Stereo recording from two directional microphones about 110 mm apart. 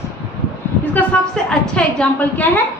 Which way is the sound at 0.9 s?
5° left (ahead or behind).